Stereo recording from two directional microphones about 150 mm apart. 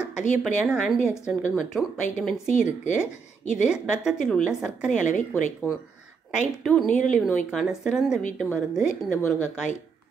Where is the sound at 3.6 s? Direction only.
5° right (ahead or behind).